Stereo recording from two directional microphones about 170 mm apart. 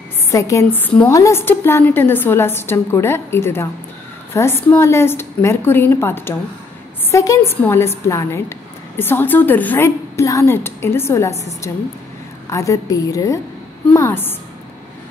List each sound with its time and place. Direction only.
0.3 s a woman's voice: 20° left (ahead or behind)